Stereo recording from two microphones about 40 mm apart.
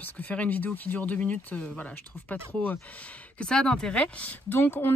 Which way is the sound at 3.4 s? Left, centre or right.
Centre.